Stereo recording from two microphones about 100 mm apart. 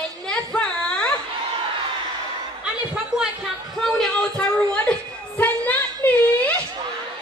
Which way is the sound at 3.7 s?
5° left (ahead or behind).